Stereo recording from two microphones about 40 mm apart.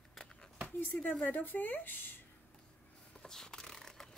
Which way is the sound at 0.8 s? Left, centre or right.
Left.